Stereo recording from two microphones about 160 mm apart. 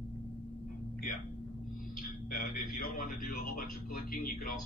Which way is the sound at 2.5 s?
65° left (ahead or behind).